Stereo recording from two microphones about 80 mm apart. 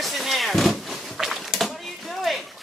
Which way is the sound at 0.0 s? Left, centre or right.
Centre.